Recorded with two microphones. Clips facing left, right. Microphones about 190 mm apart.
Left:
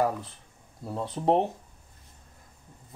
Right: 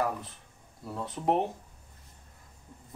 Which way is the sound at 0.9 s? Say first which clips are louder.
Left 4 dB; 30° left (ahead or behind).